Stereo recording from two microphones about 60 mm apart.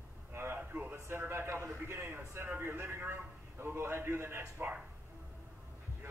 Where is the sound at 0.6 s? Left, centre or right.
Right.